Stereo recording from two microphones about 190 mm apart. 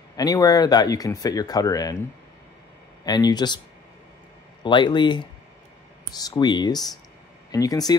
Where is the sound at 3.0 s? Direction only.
20° left (ahead or behind).